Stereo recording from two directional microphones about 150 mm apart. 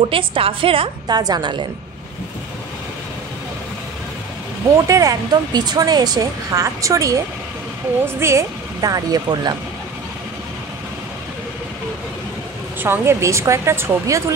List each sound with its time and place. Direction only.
0.1 s a woman's voice: 35° right (ahead or behind)
4.8 s speech: 20° right (ahead or behind)
8.2 s speech: 20° right (ahead or behind)
12.8 s speech: 15° right (ahead or behind)